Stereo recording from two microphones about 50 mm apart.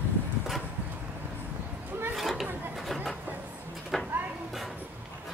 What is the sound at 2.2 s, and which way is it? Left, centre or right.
Chatter, centre.